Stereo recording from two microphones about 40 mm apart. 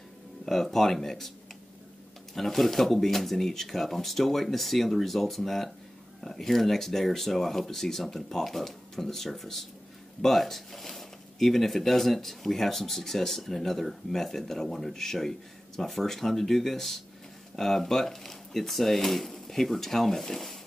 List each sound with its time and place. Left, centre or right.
0.5 s speech: centre
2.3 s speech: centre